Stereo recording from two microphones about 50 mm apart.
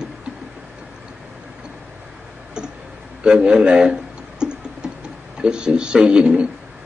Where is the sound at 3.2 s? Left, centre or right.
Centre.